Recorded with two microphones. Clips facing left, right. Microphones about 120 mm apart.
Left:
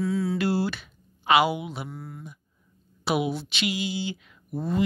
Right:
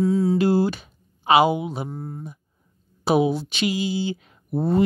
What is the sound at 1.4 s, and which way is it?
Speech, 40° right (ahead or behind).